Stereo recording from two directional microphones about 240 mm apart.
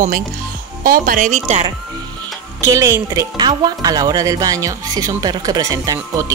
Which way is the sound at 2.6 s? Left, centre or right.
Centre.